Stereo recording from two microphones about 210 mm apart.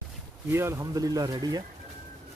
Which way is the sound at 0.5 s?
10° right (ahead or behind).